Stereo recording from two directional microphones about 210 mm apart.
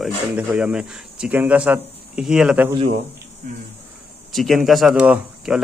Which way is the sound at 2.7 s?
25° right (ahead or behind).